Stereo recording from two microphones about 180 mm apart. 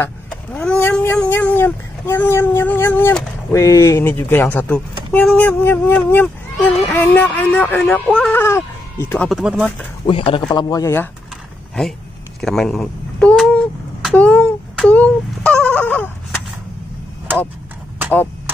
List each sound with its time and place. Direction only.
0.0 s vehicle: 10° left (ahead or behind)
1.3 s speech: 10° left (ahead or behind)
9.4 s speech: 5° right (ahead or behind)
10.0 s speech: 30° left (ahead or behind)
12.4 s a sound: centre (ahead or behind)